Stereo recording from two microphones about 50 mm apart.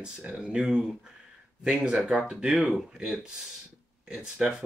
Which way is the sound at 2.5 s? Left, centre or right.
Centre.